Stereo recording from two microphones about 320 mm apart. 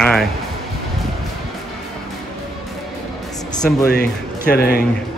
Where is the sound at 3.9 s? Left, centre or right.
Left.